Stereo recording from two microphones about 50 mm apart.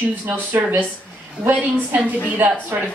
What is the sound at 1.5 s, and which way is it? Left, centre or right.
Speech, right.